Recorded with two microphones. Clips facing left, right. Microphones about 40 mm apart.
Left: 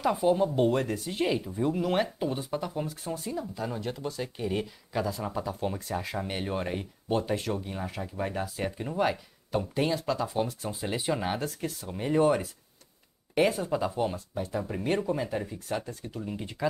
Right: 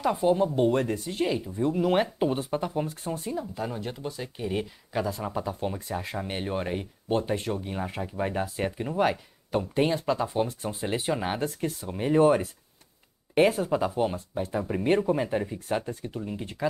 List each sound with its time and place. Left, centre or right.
0.0 s speech: centre
1.1 s speech: centre
2.1 s speech: right
16.2 s speech: centre